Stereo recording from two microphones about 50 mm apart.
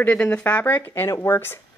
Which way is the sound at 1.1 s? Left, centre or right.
Left.